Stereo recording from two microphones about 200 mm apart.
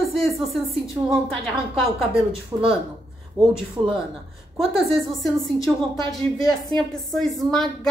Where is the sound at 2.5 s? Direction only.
15° right (ahead or behind).